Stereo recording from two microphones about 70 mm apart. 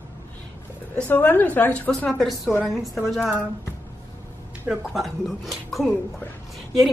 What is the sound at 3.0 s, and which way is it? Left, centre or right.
Speech, centre.